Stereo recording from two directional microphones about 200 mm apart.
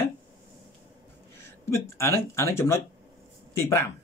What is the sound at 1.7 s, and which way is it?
Speech, 15° left (ahead or behind).